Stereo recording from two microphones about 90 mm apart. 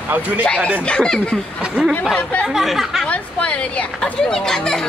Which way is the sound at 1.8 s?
10° right (ahead or behind).